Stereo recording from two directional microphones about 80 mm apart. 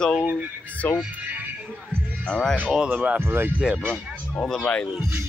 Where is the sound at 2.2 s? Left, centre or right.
Centre.